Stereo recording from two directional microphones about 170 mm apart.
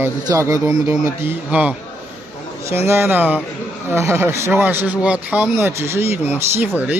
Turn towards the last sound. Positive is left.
turn(degrees=-10)  # may be behind; listen again after turning